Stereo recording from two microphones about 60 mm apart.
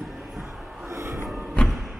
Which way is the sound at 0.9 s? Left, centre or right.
Right.